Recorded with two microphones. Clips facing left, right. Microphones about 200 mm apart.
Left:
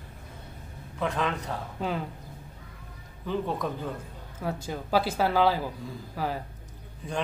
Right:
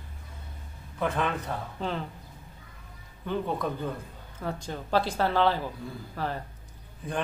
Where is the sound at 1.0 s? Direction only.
5° right (ahead or behind).